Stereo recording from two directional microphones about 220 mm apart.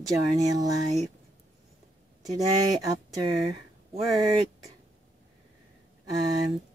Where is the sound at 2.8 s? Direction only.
15° right (ahead or behind).